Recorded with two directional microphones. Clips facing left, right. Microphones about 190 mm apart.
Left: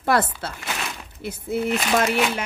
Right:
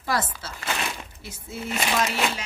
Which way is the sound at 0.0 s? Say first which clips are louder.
Left 6 dB; 60° left (ahead or behind).